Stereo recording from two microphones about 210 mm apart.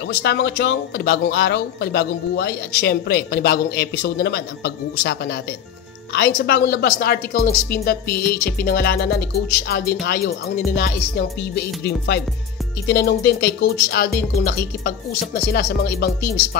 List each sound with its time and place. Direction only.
0.2 s speech: 55° left (ahead or behind)